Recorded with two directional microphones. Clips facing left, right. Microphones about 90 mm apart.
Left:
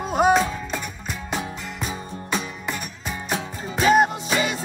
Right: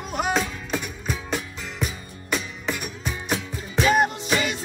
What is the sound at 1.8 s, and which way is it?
Music, 35° left (ahead or behind).